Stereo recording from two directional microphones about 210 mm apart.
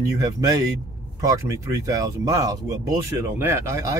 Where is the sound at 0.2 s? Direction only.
15° right (ahead or behind).